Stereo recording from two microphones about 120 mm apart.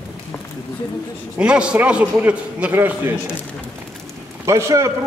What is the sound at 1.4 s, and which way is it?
A man's voice, 10° right (ahead or behind).